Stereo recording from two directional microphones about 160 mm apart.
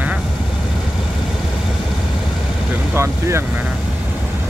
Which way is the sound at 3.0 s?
15° right (ahead or behind).